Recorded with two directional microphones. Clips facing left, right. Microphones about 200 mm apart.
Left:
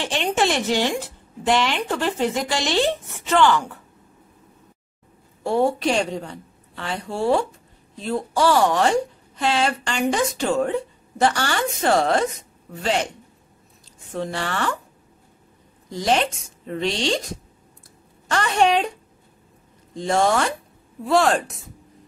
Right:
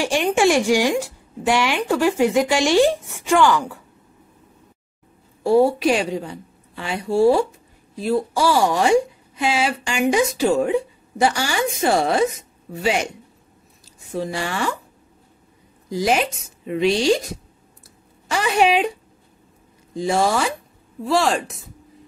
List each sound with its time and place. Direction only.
0.0 s speech: 10° right (ahead or behind)
5.4 s speech: 10° right (ahead or behind)
14.1 s speech: 10° right (ahead or behind)
15.9 s speech: 10° right (ahead or behind)
19.9 s speech: 10° right (ahead or behind)